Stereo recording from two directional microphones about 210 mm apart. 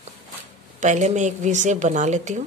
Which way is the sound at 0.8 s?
35° right (ahead or behind).